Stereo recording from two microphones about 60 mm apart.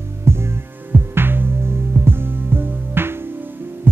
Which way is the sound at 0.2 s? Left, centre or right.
Right.